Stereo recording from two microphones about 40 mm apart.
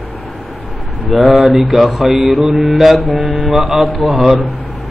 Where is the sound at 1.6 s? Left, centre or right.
Centre.